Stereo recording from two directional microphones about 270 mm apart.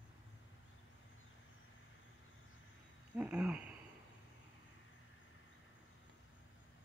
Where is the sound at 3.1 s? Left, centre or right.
Centre.